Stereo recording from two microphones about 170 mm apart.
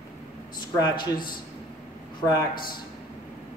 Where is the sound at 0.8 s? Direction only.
25° left (ahead or behind).